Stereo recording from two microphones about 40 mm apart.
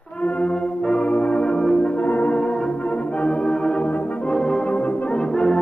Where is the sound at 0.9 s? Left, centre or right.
Left.